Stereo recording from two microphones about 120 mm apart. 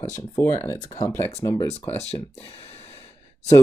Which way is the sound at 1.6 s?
65° left (ahead or behind).